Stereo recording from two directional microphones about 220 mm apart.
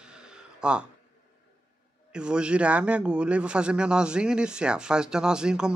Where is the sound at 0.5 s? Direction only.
5° right (ahead or behind).